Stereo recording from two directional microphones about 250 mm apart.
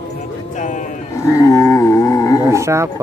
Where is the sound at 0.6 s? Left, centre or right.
Left.